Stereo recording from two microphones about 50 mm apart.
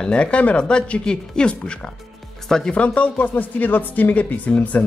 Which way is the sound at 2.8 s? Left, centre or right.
Left.